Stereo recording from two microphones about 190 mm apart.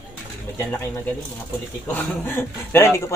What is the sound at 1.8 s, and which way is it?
Speech, 10° left (ahead or behind).